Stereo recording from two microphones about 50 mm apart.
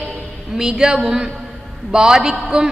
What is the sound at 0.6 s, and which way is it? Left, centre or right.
A woman's voice, centre.